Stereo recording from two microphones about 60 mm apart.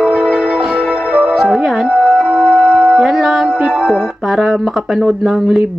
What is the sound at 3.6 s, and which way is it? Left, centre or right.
Music, centre.